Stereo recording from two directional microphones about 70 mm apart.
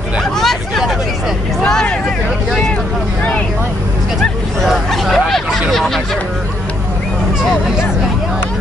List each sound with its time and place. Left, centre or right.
0.2 s hubbub: centre
1.6 s hubbub: centre
4.2 s hubbub: centre